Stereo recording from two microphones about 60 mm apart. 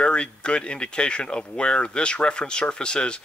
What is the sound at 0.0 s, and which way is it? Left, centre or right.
Speech, centre.